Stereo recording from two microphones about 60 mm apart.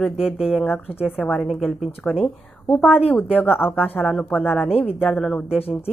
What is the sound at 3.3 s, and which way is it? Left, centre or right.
Speech, left.